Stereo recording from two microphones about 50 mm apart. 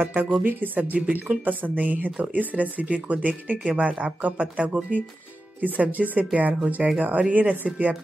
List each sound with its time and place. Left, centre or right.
0.0 s speech: right